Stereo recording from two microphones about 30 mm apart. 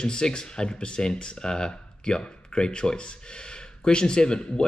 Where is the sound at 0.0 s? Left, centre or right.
Left.